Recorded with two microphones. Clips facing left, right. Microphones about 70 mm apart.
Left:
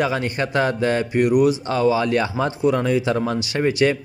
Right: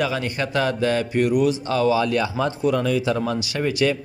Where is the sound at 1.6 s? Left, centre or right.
Left.